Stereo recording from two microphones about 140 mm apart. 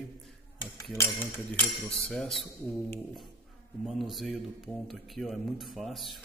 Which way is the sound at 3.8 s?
Centre (ahead or behind).